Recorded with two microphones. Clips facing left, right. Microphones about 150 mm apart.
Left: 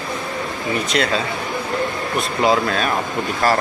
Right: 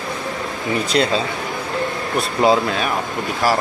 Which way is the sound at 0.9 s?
30° right (ahead or behind).